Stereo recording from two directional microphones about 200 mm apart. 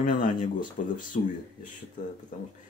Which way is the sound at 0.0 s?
40° left (ahead or behind).